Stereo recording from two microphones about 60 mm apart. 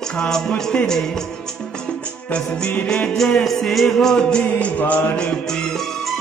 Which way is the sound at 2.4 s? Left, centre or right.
Centre.